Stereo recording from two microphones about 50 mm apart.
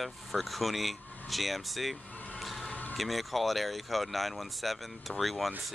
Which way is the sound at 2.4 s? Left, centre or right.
Centre.